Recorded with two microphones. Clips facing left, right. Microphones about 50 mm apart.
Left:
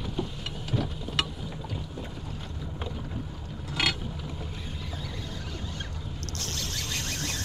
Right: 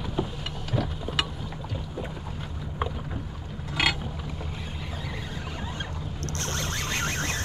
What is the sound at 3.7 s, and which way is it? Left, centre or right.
Mechanisms, centre.